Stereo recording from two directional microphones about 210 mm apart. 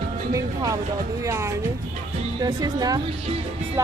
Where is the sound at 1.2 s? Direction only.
15° right (ahead or behind).